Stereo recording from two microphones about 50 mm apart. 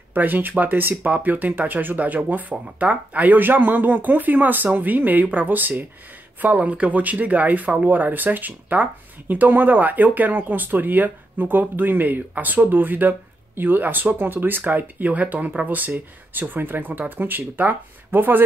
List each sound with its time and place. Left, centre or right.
0.1 s speech: right